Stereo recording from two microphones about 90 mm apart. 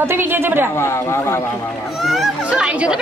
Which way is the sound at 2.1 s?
Centre (ahead or behind).